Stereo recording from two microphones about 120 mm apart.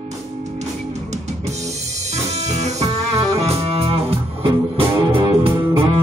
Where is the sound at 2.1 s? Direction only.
70° right (ahead or behind).